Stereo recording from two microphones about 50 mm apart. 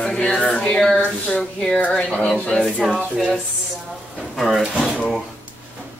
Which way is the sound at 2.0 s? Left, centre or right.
Centre.